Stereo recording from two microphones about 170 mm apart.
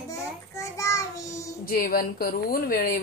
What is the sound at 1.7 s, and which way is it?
A woman's voice, 60° left (ahead or behind).